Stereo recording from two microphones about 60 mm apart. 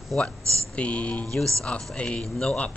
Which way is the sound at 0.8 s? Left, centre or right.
Left.